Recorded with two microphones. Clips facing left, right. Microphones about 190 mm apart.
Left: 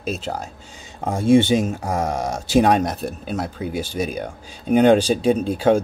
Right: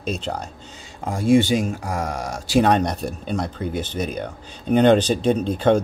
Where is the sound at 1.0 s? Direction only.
25° left (ahead or behind).